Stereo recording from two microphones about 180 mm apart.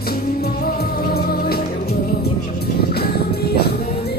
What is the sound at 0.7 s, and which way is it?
Music, 60° left (ahead or behind).